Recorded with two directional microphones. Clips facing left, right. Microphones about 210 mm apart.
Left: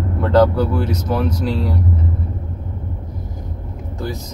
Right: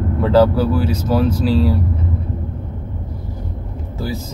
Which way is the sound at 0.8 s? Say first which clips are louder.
Right 3 dB; 30° right (ahead or behind).